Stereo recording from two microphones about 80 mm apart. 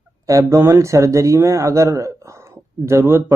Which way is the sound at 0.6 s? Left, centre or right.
Right.